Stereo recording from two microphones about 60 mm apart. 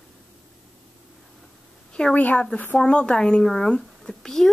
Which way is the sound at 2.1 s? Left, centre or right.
Left.